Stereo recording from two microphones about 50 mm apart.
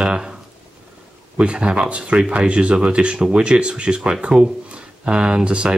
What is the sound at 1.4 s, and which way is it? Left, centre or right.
Speech, right.